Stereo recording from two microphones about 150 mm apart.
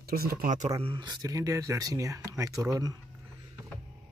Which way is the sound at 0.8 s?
30° right (ahead or behind).